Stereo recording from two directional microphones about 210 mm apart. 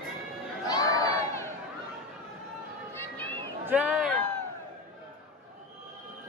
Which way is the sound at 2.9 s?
10° left (ahead or behind).